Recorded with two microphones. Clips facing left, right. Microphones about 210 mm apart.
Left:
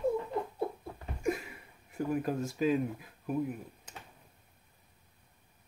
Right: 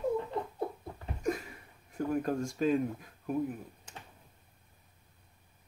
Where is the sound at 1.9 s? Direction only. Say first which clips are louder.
Right 1 dB; 5° left (ahead or behind).